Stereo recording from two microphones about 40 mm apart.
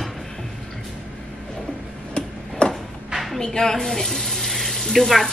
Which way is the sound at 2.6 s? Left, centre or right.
Left.